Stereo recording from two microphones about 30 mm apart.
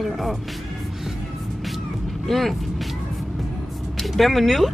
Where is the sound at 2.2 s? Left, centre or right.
Centre.